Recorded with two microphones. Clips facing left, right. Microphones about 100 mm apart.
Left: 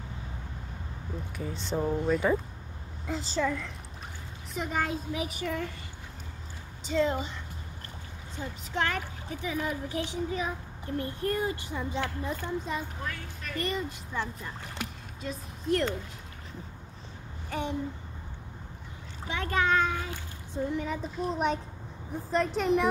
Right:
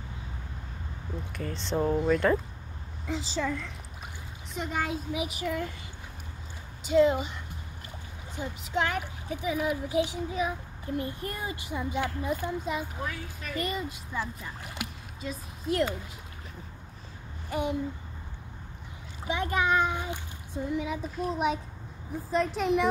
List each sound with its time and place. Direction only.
1.3 s speech: 10° left (ahead or behind)
1.8 s speech: 5° right (ahead or behind)
2.0 s a child's voice: 5° left (ahead or behind)
6.8 s a woman's voice: 10° right (ahead or behind)
8.4 s speech: 15° right (ahead or behind)
17.5 s a sound: 10° right (ahead or behind)
19.2 s speech: 15° right (ahead or behind)
20.7 s a child's voice: 5° right (ahead or behind)